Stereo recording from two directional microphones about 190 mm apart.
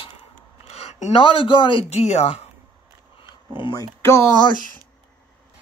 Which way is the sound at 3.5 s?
25° left (ahead or behind).